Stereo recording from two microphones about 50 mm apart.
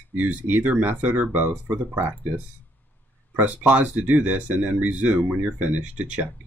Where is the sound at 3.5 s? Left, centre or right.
Right.